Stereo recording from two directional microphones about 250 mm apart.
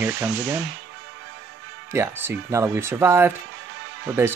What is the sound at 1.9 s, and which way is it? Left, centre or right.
Speech, centre.